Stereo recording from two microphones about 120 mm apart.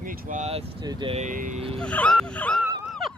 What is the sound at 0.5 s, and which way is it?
Speech, 55° right (ahead or behind).